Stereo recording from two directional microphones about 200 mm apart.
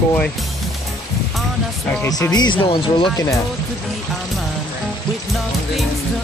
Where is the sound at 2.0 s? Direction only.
15° left (ahead or behind).